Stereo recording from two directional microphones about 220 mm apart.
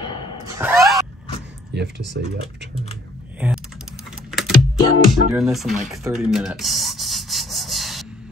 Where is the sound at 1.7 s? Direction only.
50° right (ahead or behind).